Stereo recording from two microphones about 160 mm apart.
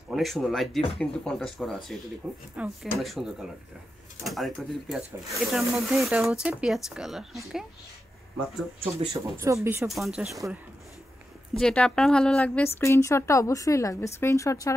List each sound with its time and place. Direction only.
0.1 s speech: centre (ahead or behind)
9.1 s speech: 20° right (ahead or behind)
9.8 s speech: centre (ahead or behind)
11.6 s speech: 5° left (ahead or behind)